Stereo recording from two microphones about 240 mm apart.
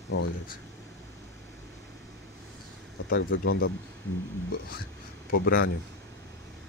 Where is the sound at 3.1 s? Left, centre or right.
Left.